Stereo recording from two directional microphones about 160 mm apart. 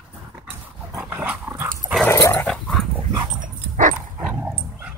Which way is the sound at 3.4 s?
55° right (ahead or behind).